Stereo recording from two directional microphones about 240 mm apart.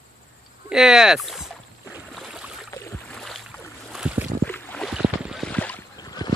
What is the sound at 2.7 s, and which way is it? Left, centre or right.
Boat, centre.